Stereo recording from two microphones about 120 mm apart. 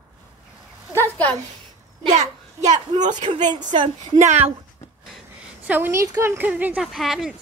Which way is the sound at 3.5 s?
40° right (ahead or behind).